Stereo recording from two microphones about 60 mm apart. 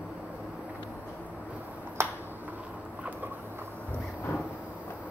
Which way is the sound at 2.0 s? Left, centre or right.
Right.